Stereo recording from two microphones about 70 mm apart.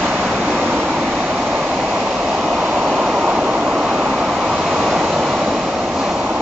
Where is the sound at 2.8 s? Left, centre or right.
Centre.